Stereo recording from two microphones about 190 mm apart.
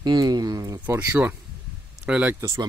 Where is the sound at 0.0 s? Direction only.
20° right (ahead or behind).